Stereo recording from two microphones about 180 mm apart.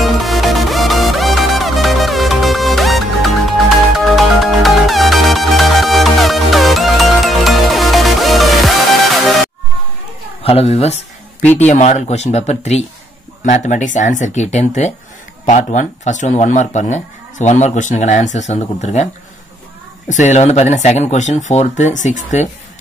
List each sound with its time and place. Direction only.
0.0 s music: centre (ahead or behind)
10.4 s speech: 35° left (ahead or behind)
11.4 s speech: 10° left (ahead or behind)
11.7 s speech: 40° left (ahead or behind)
20.1 s speech: 40° left (ahead or behind)